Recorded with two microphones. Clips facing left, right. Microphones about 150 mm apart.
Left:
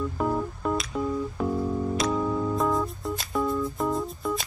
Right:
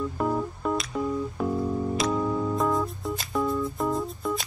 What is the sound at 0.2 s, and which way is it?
Music, centre (ahead or behind).